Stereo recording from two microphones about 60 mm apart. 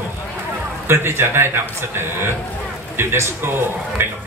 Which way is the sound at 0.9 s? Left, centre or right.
Right.